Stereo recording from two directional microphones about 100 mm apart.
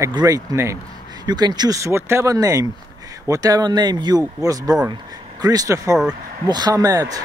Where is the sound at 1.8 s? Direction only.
25° right (ahead or behind).